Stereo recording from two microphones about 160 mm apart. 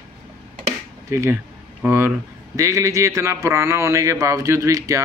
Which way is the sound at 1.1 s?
15° right (ahead or behind).